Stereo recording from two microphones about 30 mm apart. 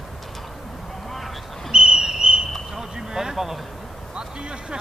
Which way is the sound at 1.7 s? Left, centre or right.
Right.